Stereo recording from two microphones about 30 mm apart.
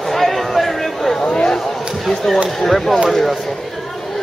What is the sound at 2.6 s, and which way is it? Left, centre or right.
Speech, centre.